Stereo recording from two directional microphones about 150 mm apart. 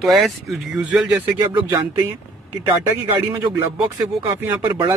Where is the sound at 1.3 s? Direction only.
20° right (ahead or behind).